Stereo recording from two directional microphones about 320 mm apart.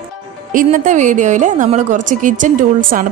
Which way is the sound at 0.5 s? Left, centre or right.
Right.